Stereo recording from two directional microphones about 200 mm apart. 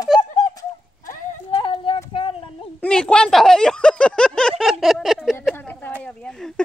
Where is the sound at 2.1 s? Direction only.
30° left (ahead or behind).